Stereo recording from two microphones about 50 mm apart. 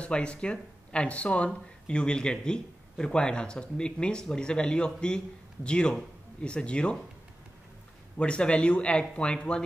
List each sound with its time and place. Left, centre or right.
0.0 s speech: left
8.2 s speech: centre